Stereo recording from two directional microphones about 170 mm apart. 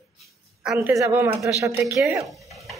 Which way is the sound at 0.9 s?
15° right (ahead or behind).